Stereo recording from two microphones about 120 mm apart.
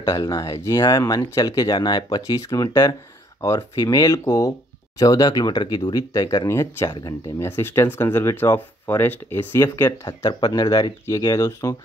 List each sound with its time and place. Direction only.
0.0 s speech: 30° left (ahead or behind)
10.0 s speech: 35° left (ahead or behind)